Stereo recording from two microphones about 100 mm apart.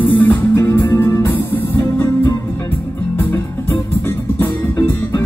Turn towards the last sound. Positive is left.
turn(degrees=25)  # may be behind; listen again after turning